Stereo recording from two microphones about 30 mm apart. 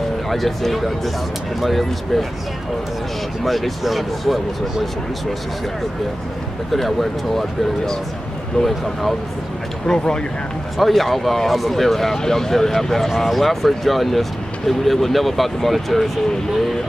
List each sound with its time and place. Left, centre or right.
0.3 s speech: centre
3.4 s speech: centre
6.7 s speech: centre
8.6 s speech: left
9.8 s speech: left
10.8 s speech: centre